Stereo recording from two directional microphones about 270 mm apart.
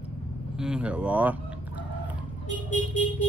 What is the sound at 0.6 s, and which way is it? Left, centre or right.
Speech, centre.